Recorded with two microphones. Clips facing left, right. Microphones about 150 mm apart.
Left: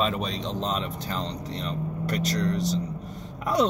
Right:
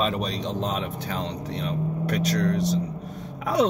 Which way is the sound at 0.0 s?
40° right (ahead or behind).